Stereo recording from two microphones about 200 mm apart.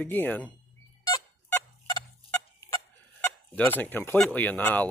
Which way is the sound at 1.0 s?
15° left (ahead or behind).